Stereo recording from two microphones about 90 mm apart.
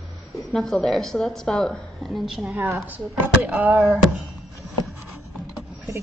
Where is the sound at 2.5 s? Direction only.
30° right (ahead or behind).